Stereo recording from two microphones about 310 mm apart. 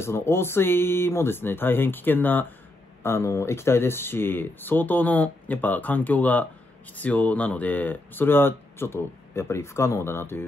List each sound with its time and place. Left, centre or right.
0.0 s speech: centre